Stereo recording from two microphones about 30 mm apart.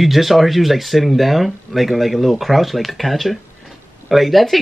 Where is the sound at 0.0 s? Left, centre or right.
Centre.